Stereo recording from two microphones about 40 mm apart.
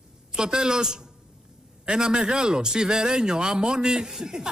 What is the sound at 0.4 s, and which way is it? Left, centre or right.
Speech, centre.